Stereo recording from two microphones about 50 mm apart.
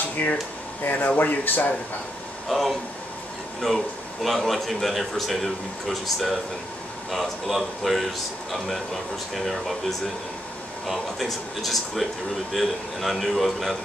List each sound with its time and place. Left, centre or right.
0.2 s speech: left
0.8 s speech: left
2.4 s a man's voice: centre